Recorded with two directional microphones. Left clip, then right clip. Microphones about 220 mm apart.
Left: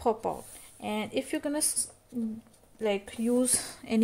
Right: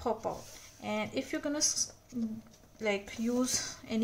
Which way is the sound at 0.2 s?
40° left (ahead or behind).